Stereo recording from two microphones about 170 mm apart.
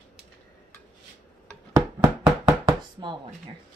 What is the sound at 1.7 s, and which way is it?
Chopping, 15° right (ahead or behind).